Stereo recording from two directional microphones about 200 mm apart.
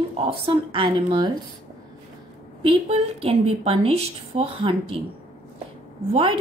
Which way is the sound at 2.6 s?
30° right (ahead or behind).